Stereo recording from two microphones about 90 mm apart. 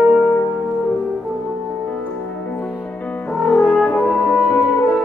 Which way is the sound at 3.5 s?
10° left (ahead or behind).